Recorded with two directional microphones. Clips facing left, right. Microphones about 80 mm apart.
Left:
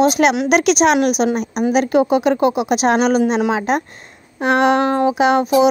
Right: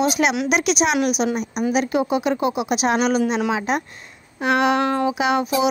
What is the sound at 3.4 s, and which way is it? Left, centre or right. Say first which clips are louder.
Speech: left 4 dB; left.